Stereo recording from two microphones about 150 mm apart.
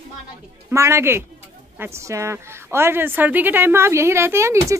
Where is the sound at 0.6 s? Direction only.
20° right (ahead or behind).